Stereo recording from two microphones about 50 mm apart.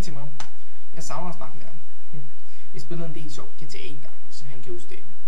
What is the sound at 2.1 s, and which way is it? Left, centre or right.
Speech, left.